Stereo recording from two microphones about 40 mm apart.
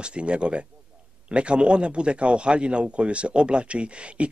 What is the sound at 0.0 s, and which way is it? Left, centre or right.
Speech, right.